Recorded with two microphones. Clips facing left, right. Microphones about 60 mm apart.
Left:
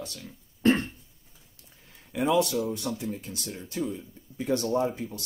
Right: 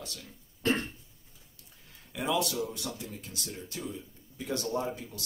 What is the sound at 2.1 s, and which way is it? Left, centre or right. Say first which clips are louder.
Speech: left 6 dB; left.